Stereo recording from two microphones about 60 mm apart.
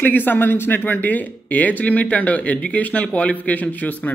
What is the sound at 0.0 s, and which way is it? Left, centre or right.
Speech, left.